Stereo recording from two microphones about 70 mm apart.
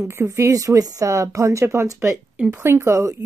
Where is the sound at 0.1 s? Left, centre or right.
Right.